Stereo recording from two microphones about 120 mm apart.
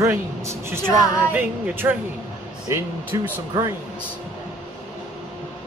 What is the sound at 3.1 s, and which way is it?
Speech, 30° right (ahead or behind).